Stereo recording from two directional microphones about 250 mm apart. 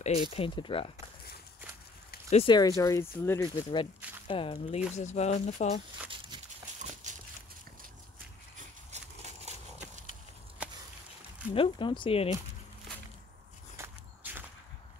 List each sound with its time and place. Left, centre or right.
0.0 s speech: left
2.2 s speech: left
7.0 s a sound: right
8.9 s a sound: right
11.5 s speech: centre
13.7 s walk: centre